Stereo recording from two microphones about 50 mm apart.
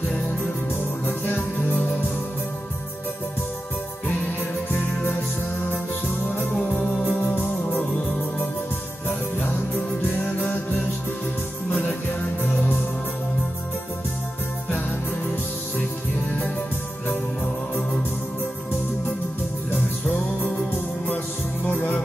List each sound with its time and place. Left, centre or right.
1.0 s music: left
7.1 s music: left